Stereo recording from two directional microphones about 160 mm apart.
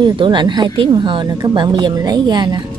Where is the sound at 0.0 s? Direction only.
30° right (ahead or behind).